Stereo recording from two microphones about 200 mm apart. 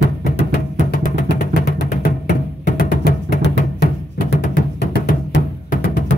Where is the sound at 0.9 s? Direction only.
50° left (ahead or behind).